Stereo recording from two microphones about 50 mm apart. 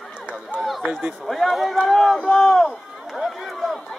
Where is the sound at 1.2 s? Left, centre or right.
Centre.